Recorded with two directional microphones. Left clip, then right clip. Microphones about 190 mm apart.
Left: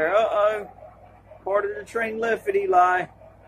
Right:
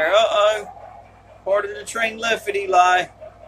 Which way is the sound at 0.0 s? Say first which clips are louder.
Right 4 dB; 15° left (ahead or behind).